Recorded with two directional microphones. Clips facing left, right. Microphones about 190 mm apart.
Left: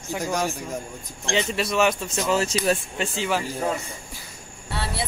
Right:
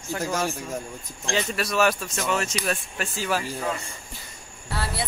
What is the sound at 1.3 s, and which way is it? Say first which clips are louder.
Speech: left 2 dB; 20° left (ahead or behind).